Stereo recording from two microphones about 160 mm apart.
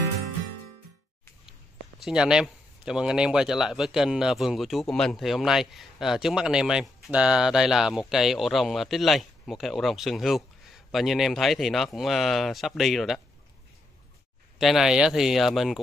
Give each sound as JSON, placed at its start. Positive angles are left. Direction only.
{"t": 2.0, "sound": "speech", "side_deg": -5}
{"t": 14.6, "sound": "speech", "side_deg": 0}